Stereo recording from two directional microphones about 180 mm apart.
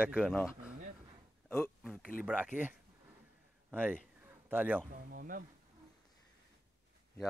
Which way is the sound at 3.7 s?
10° right (ahead or behind).